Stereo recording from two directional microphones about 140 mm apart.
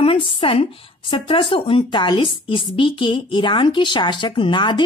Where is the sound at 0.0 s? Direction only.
40° left (ahead or behind).